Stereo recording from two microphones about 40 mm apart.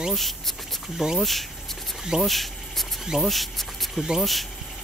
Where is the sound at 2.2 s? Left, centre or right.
Centre.